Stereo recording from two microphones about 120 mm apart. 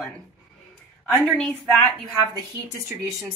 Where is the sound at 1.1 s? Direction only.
Centre (ahead or behind).